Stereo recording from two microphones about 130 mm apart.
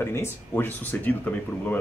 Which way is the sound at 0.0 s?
20° left (ahead or behind).